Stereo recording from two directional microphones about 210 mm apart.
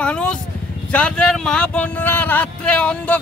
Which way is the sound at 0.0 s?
5° left (ahead or behind).